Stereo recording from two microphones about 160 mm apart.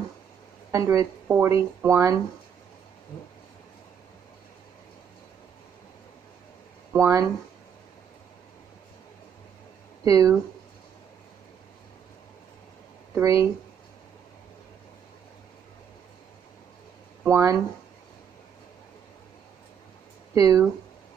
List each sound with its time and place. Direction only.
0.7 s speech: 20° right (ahead or behind)
6.9 s speech: 20° right (ahead or behind)
10.0 s speech: 20° right (ahead or behind)
13.1 s speech: 20° right (ahead or behind)
17.3 s speech: 20° right (ahead or behind)
20.3 s speech: 20° right (ahead or behind)